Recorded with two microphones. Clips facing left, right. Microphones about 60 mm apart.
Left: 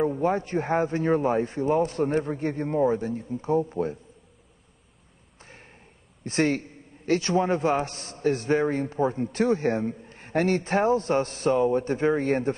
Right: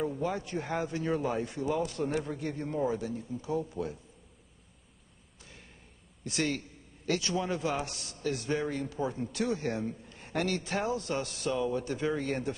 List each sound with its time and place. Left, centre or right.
0.0 s a man's voice: left
5.4 s a sound: left
6.2 s a man's voice: left